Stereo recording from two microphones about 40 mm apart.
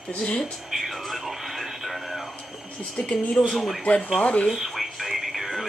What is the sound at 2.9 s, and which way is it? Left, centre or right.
Speech, left.